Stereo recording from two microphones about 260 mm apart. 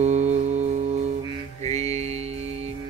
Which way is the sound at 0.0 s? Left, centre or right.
Right.